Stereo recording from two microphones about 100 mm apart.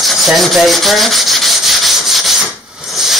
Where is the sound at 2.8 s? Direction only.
5° right (ahead or behind).